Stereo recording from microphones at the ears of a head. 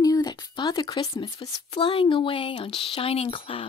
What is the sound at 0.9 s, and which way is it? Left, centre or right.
Speech, left.